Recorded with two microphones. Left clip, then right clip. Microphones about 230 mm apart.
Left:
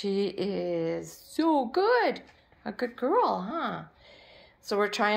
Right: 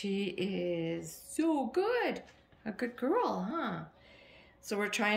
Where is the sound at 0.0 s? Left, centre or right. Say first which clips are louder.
Left 7 dB; left.